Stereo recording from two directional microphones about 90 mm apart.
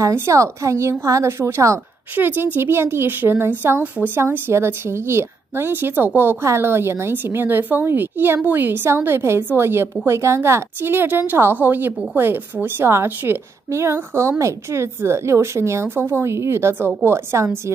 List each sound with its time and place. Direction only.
0.1 s a woman's voice: 30° right (ahead or behind)
2.1 s a woman's voice: 20° right (ahead or behind)